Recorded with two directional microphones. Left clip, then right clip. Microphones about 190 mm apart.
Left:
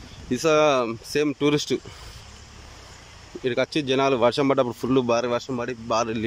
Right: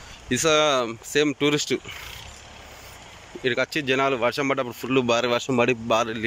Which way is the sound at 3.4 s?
10° left (ahead or behind).